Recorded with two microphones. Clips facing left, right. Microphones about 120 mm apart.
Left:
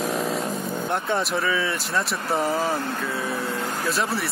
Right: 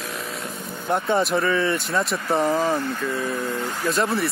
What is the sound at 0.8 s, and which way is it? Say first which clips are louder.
Speech: right 5 dB; centre (ahead or behind).